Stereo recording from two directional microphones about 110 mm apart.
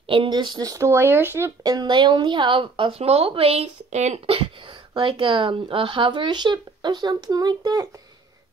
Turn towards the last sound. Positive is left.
turn(degrees=-40)  # may be behind; listen again after turning